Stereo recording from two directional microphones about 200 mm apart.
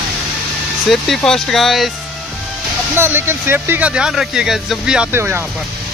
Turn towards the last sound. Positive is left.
turn(degrees=-10)  # may be behind; listen again after turning